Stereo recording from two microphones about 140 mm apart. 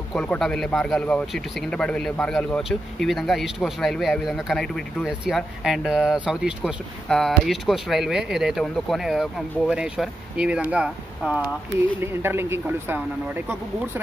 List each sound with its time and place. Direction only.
0.1 s speech: 5° left (ahead or behind); by 13.0 s 15° right (ahead or behind)